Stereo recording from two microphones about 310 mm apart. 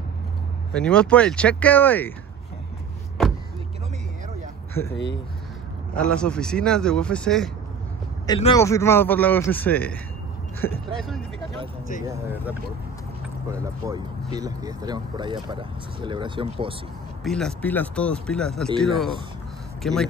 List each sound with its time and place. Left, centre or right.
0.7 s speech: centre
3.2 s vehicle: centre
4.9 s speech: left
5.9 s speech: centre
8.3 s a man's voice: centre
12.1 s speech: centre
17.2 s speech: centre